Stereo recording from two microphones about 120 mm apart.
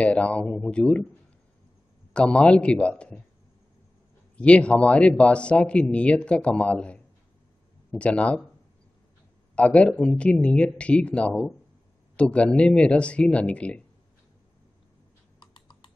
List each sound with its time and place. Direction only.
0.0 s speech: 10° left (ahead or behind)
2.1 s speech: 10° left (ahead or behind)
4.4 s speech: 10° left (ahead or behind)
9.6 s speech: 10° left (ahead or behind)
15.3 s computer keyboard: 40° left (ahead or behind)